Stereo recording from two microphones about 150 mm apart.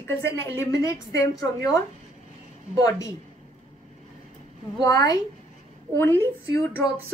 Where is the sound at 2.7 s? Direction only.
20° left (ahead or behind).